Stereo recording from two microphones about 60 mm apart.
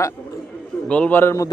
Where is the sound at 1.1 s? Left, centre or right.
Left.